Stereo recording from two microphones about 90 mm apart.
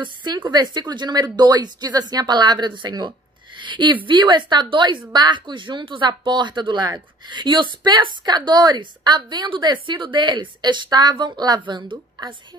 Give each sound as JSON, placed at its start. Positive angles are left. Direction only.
{"t": 0.0, "sound": "a woman's voice", "side_deg": -60}